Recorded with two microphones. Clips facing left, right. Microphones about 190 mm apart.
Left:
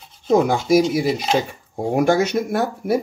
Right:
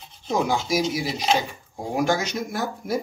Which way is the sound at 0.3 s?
55° left (ahead or behind).